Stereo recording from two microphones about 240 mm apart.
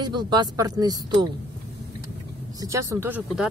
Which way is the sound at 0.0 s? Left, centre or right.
Centre.